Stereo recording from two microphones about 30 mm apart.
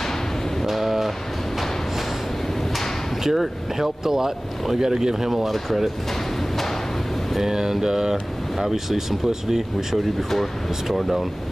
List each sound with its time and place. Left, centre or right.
0.7 s a sound: centre
3.3 s speech: centre
7.4 s speech: centre
10.9 s speech: centre